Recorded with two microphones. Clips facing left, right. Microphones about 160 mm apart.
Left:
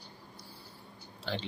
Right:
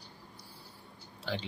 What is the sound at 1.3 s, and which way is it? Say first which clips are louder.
Speech: even; 10° right (ahead or behind).